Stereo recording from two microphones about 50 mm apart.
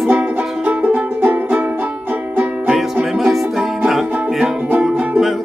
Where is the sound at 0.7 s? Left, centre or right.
Right.